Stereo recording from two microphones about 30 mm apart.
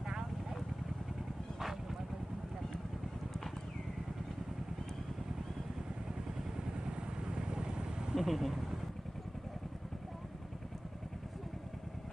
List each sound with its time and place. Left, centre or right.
6.6 s vehicle: right
8.1 s speech: centre